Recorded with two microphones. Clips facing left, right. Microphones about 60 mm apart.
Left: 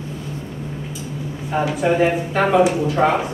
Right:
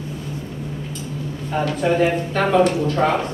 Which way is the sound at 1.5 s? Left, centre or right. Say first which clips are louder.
Left 1 dB; centre.